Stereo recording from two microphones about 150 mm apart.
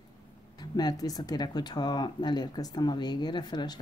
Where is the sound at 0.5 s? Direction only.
25° left (ahead or behind).